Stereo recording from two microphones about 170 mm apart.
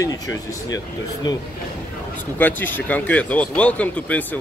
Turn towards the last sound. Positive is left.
turn(degrees=10)  # may be behind; listen again after turning